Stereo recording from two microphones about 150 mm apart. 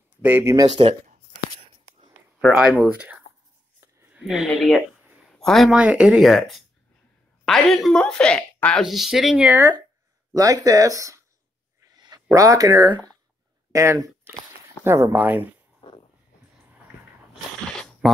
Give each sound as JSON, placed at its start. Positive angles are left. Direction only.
{"t": 0.2, "sound": "speech", "side_deg": -15}
{"t": 2.4, "sound": "speech", "side_deg": -5}
{"t": 9.6, "sound": "speech", "side_deg": -20}
{"t": 11.9, "sound": "a sound", "side_deg": -25}
{"t": 12.4, "sound": "speech", "side_deg": -25}
{"t": 15.8, "sound": "a sound", "side_deg": 35}
{"t": 17.7, "sound": "dog", "side_deg": 5}